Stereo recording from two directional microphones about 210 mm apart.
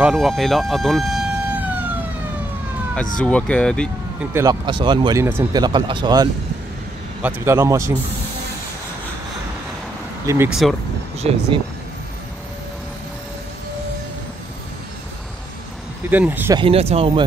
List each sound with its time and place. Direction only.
0.0 s a sound: centre (ahead or behind)
3.2 s speech: 5° left (ahead or behind)
4.3 s speech: 15° right (ahead or behind)
7.2 s speech: 10° right (ahead or behind)
10.2 s speech: 15° right (ahead or behind)
10.5 s speech: centre (ahead or behind)
11.1 s speech: 30° right (ahead or behind)
16.1 s speech: 10° right (ahead or behind)
16.5 s speech: 25° right (ahead or behind)